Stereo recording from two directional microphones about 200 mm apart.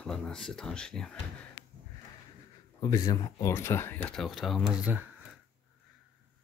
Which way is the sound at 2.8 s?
20° left (ahead or behind).